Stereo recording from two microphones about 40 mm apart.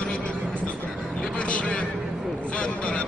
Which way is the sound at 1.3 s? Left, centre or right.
Left.